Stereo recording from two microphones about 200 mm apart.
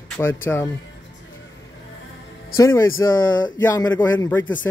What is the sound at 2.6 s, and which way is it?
Speech, 15° left (ahead or behind).